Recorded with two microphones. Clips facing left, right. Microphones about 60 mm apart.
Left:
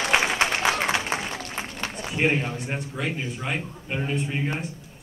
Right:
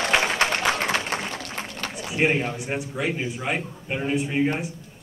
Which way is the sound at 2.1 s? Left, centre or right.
Centre.